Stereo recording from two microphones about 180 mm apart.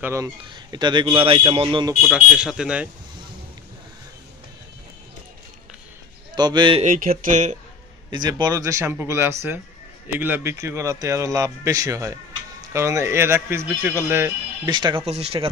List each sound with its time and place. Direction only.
0.0 s a man's voice: 15° right (ahead or behind)
2.0 s speech: 5° right (ahead or behind)
6.3 s a man's voice: 25° right (ahead or behind)
6.8 s a sound: 50° right (ahead or behind)
8.1 s a man's voice: 25° right (ahead or behind)
14.7 s a man's voice: 25° right (ahead or behind)